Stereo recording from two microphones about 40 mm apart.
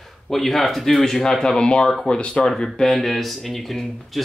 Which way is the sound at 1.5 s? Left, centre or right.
Left.